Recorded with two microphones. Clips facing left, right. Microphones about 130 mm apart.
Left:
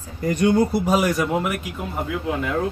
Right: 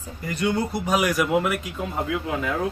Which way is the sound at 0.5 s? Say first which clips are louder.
Left 6 dB; 10° left (ahead or behind).